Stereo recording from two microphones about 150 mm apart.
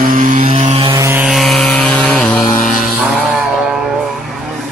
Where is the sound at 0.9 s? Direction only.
15° right (ahead or behind).